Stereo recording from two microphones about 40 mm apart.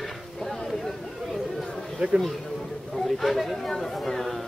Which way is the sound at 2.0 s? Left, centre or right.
Right.